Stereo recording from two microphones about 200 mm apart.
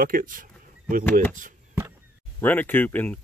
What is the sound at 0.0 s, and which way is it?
Speech, 45° right (ahead or behind).